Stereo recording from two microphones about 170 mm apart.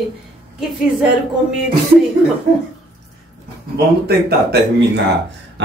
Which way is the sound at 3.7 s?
75° right (ahead or behind).